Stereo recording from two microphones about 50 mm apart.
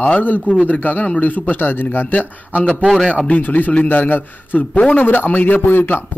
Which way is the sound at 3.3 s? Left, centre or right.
Left.